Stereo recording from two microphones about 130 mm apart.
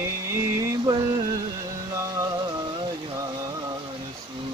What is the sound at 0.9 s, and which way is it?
Music, 35° right (ahead or behind).